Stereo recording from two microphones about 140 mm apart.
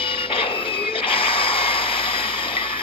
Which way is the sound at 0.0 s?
40° left (ahead or behind).